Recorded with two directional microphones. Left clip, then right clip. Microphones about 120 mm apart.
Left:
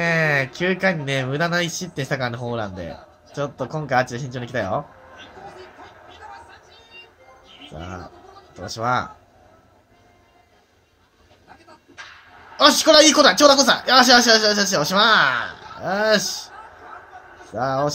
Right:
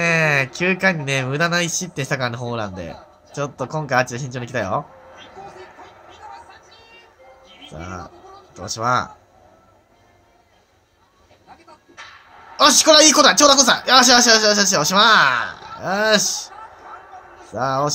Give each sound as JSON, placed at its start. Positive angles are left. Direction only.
{"t": 0.0, "sound": "speech", "side_deg": -40}
{"t": 7.7, "sound": "speech", "side_deg": -40}
{"t": 12.5, "sound": "speech", "side_deg": -40}